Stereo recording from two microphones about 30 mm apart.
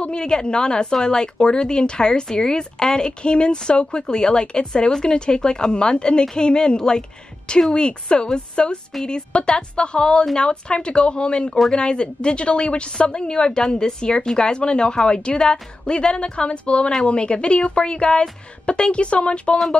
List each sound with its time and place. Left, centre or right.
0.0 s a woman's voice: left